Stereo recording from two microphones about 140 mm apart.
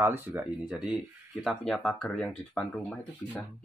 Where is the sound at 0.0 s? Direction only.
15° right (ahead or behind); by 3.0 s 5° left (ahead or behind).